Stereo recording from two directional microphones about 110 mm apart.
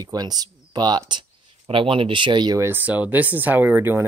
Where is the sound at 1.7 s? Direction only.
55° right (ahead or behind).